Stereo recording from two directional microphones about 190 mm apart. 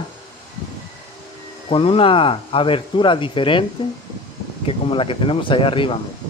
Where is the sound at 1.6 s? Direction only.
30° left (ahead or behind).